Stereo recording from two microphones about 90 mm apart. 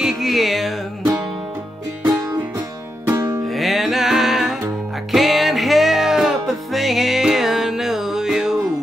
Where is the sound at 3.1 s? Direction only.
35° right (ahead or behind).